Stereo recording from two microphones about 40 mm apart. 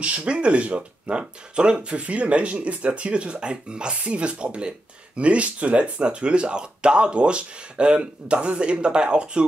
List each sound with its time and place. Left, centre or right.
0.0 s speech: right